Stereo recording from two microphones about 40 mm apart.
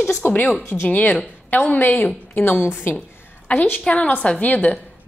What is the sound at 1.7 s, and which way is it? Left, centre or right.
Speech, left.